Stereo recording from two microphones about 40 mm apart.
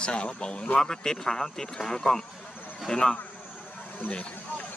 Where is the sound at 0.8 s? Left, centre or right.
Centre.